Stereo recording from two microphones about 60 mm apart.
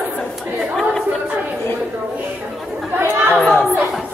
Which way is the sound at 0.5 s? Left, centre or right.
Centre.